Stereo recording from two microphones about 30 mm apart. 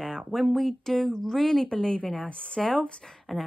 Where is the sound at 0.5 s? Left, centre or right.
Centre.